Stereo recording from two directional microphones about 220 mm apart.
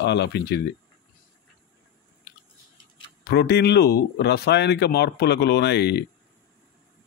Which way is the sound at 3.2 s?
45° left (ahead or behind).